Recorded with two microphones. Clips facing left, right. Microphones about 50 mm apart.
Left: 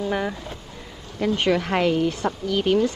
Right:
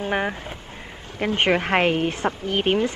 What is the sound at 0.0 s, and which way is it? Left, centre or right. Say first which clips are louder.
Speech: right 1 dB; right.